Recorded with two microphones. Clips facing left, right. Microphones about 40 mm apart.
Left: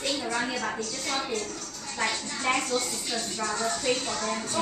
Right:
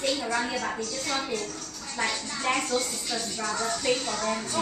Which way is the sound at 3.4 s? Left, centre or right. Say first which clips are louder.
Even; left.